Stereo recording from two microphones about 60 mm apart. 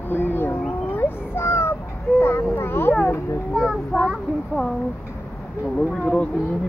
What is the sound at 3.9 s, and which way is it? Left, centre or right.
Speech, centre.